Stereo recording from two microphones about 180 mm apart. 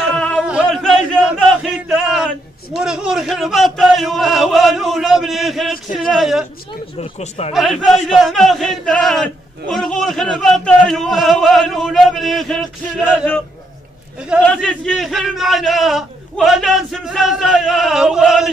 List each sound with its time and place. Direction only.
0.2 s a sound: 5° left (ahead or behind)
0.5 s a man's voice: centre (ahead or behind)
7.0 s speech: 35° left (ahead or behind)
7.5 s speech: centre (ahead or behind)
14.4 s speech: 5° left (ahead or behind)